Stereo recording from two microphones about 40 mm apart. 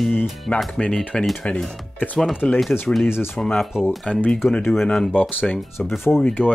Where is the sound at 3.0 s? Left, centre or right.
Left.